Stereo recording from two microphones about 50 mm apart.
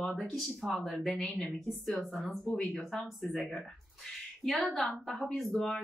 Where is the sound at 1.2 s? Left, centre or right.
Centre.